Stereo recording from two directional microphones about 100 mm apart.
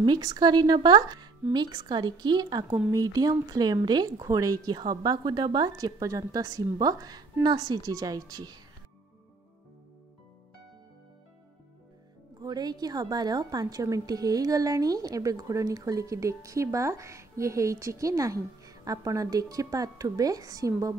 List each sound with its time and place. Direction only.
0.0 s a woman's voice: 40° right (ahead or behind)
12.4 s a woman's voice: 40° right (ahead or behind)